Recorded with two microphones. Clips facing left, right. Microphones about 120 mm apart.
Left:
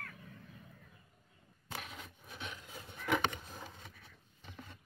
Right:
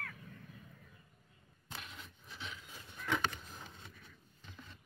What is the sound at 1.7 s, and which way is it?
Vehicle, 55° left (ahead or behind).